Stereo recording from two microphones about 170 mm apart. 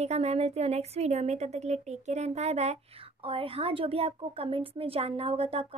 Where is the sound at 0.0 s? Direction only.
40° right (ahead or behind).